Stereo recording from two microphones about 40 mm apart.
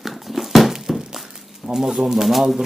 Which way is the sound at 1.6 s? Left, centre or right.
Centre.